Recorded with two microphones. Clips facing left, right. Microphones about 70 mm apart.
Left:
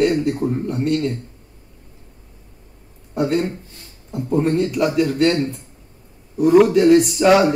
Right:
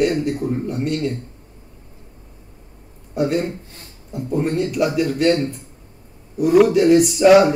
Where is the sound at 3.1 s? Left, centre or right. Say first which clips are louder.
Even; centre.